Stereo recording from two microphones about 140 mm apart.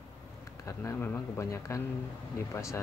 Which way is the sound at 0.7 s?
20° left (ahead or behind).